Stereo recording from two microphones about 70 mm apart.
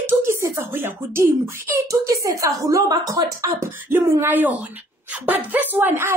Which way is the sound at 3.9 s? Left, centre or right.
Right.